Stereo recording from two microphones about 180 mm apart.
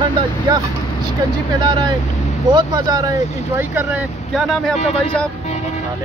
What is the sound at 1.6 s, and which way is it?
Speech, 25° right (ahead or behind).